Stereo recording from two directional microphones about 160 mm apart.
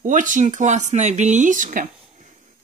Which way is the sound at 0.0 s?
55° right (ahead or behind).